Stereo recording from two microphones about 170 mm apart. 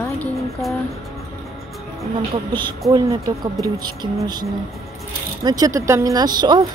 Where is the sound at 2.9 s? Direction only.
20° right (ahead or behind).